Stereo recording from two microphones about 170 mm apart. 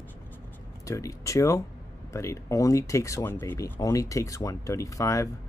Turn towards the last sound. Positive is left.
turn(degrees=20)  # may be behind; listen again after turning